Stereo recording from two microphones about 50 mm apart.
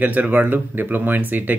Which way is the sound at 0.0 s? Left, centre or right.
Right.